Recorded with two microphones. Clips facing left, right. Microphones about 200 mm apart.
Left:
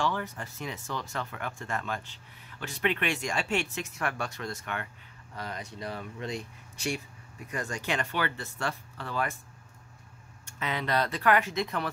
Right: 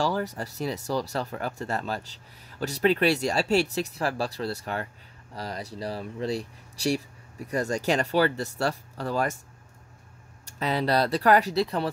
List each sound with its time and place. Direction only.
0.0 s speech: 40° right (ahead or behind)
10.4 s speech: 35° right (ahead or behind)